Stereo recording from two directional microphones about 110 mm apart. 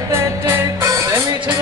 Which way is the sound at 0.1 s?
25° right (ahead or behind).